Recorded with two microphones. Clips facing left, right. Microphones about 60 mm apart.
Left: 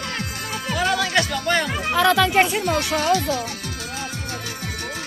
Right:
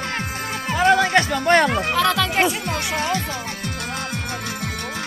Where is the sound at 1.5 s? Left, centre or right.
Right.